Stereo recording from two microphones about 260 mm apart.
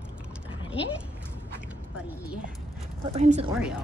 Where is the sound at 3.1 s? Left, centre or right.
Right.